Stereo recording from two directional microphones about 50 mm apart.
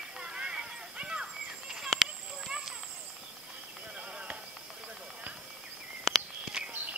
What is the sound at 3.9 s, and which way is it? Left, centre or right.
Horse, right.